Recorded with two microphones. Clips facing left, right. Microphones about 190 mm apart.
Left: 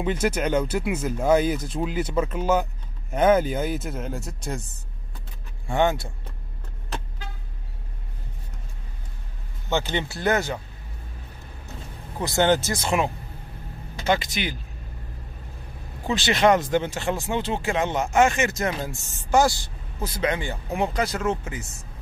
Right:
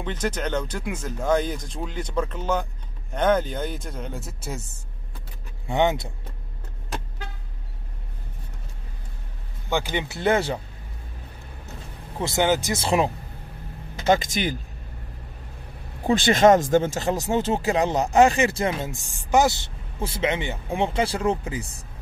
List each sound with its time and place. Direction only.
0.0 s speech: 10° left (ahead or behind)
5.7 s speech: 20° right (ahead or behind)
9.7 s speech: 10° right (ahead or behind)
10.1 s speech: 25° right (ahead or behind)
12.2 s speech: 25° right (ahead or behind)
12.4 s speech: 10° right (ahead or behind)
12.7 s speech: 30° right (ahead or behind)
14.0 s speech: 45° right (ahead or behind)
16.2 s speech: 45° right (ahead or behind); by 18.9 s 25° right (ahead or behind)
18.9 s speech: 15° right (ahead or behind); by 21.8 s 30° right (ahead or behind)